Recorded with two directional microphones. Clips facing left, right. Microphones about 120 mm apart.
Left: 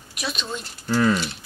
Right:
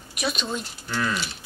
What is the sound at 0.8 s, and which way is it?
Speech, 35° left (ahead or behind).